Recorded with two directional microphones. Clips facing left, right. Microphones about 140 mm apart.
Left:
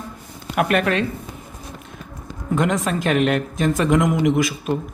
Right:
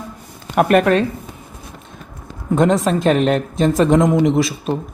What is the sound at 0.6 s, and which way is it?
Speech, 40° right (ahead or behind).